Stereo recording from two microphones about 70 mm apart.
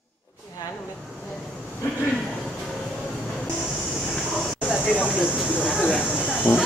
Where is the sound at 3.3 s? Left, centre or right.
Centre.